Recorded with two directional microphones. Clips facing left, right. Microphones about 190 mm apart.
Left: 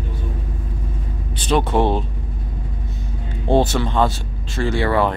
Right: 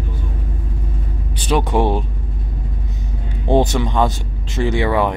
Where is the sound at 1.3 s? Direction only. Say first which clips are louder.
Even; 10° right (ahead or behind).